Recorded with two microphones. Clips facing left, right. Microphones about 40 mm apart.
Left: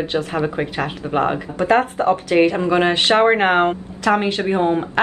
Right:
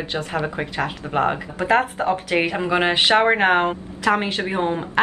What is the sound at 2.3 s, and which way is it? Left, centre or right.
Speech, centre.